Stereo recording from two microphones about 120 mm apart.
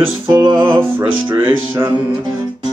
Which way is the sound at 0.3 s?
35° right (ahead or behind).